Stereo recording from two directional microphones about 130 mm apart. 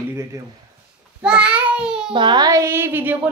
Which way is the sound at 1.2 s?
5° right (ahead or behind).